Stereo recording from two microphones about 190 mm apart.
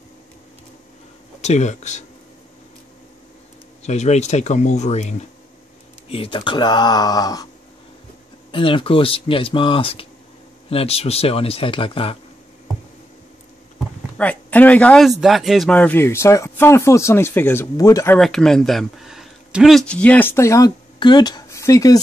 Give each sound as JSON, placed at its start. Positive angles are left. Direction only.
{"t": 1.4, "sound": "speech", "side_deg": 35}
{"t": 3.8, "sound": "speech", "side_deg": 35}
{"t": 8.5, "sound": "speech", "side_deg": 25}
{"t": 14.1, "sound": "speech", "side_deg": 10}
{"t": 18.2, "sound": "speech", "side_deg": 0}